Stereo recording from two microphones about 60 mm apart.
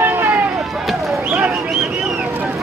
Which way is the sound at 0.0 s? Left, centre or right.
Right.